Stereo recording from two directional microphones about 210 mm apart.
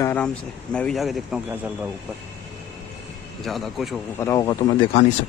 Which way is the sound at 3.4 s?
Centre (ahead or behind).